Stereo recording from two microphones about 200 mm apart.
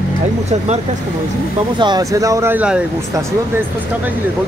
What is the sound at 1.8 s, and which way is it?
Speech, 20° right (ahead or behind).